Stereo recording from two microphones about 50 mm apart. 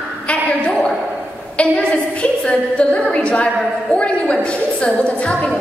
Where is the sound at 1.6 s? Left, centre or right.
Left.